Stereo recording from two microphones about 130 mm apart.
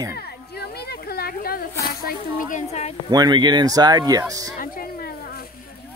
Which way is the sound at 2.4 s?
75° left (ahead or behind).